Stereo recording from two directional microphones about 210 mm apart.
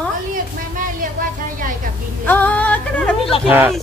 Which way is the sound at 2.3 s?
5° left (ahead or behind).